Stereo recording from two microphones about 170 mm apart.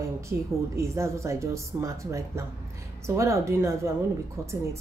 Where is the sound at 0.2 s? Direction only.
15° right (ahead or behind).